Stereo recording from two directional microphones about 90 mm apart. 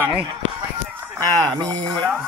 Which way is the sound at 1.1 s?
45° right (ahead or behind).